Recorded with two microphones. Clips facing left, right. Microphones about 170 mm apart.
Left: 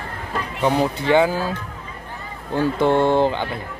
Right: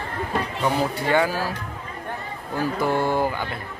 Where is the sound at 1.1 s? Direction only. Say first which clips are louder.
Left 5 dB; 20° left (ahead or behind).